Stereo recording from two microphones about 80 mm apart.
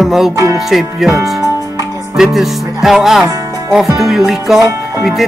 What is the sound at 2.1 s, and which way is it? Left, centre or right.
Music, centre.